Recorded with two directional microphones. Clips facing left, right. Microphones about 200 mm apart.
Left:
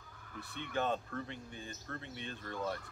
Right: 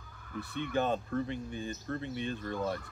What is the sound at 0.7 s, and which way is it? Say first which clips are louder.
Speech: right 5 dB; 15° right (ahead or behind).